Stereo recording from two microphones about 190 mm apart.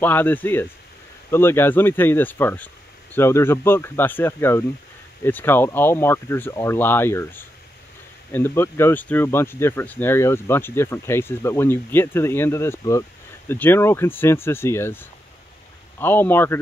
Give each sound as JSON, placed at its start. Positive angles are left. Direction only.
{"t": 0.0, "sound": "speech", "side_deg": 10}